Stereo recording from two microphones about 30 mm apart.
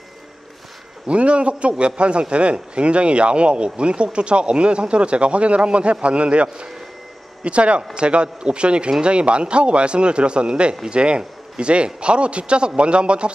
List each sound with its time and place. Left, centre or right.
1.0 s a man's voice: right